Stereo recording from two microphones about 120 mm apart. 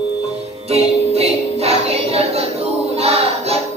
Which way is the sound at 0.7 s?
60° right (ahead or behind).